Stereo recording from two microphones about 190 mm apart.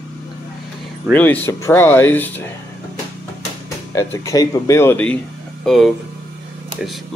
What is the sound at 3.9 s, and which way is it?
Speech, 15° left (ahead or behind).